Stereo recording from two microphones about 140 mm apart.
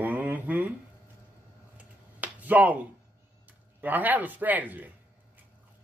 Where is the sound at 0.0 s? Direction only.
10° right (ahead or behind).